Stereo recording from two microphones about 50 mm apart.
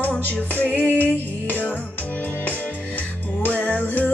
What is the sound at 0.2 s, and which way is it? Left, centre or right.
Music, left.